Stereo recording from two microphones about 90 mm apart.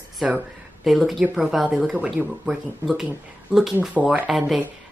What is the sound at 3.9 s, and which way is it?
Speech, 15° right (ahead or behind).